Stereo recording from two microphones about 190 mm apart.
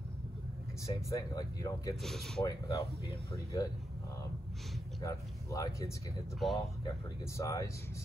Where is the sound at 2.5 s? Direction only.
15° left (ahead or behind).